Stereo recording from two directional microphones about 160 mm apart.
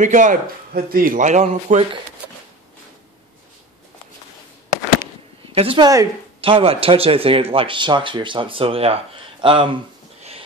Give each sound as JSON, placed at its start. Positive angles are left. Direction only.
{"t": 0.0, "sound": "a man's voice", "side_deg": -50}
{"t": 5.5, "sound": "a woman's voice", "side_deg": -35}